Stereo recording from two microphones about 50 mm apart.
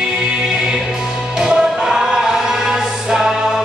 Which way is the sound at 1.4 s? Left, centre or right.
Centre.